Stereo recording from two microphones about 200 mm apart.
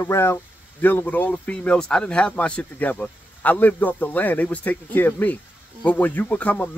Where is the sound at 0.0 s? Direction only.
15° left (ahead or behind).